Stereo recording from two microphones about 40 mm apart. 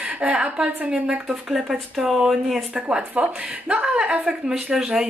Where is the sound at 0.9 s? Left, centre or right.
Right.